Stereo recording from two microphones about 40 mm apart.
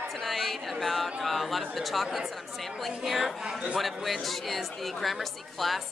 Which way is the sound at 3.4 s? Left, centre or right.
Centre.